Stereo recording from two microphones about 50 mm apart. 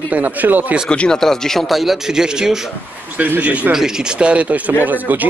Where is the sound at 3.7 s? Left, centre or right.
Centre; by 5.3 s right.